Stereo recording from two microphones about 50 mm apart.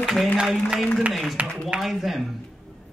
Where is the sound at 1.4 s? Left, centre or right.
Right.